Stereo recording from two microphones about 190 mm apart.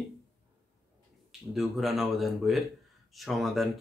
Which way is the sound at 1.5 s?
Centre (ahead or behind).